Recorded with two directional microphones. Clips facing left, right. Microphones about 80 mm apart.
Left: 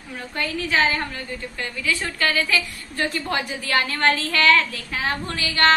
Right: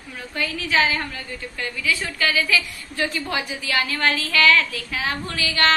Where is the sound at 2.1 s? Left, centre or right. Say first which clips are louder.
Right 1 dB; left.